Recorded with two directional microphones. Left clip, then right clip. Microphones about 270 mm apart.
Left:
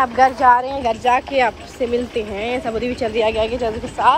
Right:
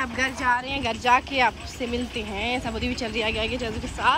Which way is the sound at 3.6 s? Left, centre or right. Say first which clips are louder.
Left 8 dB; centre.